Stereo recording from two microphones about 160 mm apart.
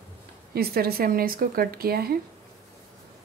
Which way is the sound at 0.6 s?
75° right (ahead or behind).